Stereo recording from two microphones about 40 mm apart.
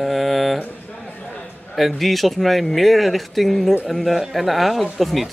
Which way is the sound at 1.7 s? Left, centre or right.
Centre.